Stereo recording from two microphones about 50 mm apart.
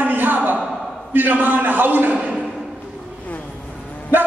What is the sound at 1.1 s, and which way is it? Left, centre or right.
A man's voice, right.